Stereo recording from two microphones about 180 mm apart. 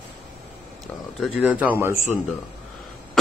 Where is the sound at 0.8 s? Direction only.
5° right (ahead or behind).